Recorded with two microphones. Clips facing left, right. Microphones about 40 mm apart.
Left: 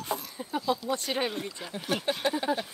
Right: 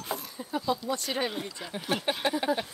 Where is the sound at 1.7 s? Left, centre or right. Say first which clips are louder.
Even; centre.